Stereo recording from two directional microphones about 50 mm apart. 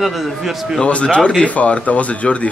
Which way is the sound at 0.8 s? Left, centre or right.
Left.